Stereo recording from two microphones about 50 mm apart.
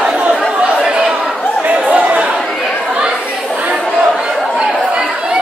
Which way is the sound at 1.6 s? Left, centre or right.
Right.